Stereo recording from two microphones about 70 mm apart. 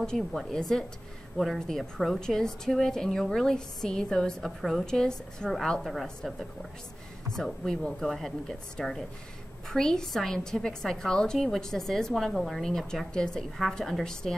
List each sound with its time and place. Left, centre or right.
0.0 s a woman's voice: centre